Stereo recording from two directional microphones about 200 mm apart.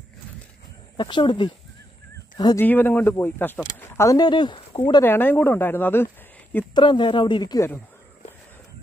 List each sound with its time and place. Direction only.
0.9 s speech: 25° left (ahead or behind)
2.6 s speech: 10° left (ahead or behind)
5.0 s speech: 10° left (ahead or behind)
6.7 s speech: 25° left (ahead or behind)